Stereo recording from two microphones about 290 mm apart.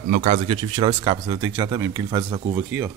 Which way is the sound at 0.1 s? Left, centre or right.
Right.